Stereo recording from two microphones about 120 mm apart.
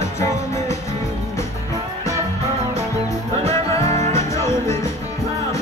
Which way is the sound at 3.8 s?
65° right (ahead or behind).